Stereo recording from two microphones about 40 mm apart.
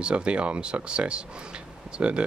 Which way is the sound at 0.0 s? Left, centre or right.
Right.